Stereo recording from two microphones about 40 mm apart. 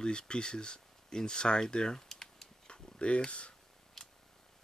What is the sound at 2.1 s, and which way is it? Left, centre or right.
Typing, centre.